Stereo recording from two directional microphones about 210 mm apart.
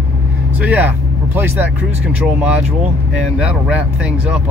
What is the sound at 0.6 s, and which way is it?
Vehicle, 5° right (ahead or behind).